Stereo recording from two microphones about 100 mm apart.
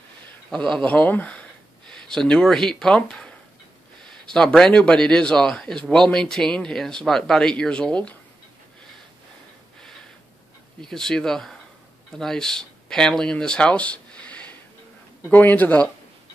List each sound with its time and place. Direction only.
0.5 s a man's voice: 5° left (ahead or behind)
10.8 s a man's voice: 5° left (ahead or behind)